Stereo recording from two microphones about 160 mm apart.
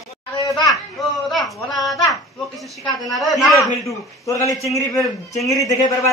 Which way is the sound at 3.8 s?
20° left (ahead or behind).